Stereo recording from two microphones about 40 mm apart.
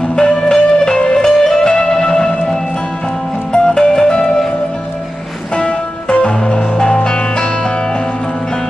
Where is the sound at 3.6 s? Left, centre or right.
Centre.